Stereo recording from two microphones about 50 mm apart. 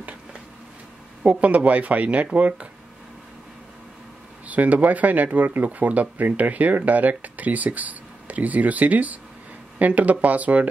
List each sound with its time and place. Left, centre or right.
1.2 s speech: right
4.5 s speech: right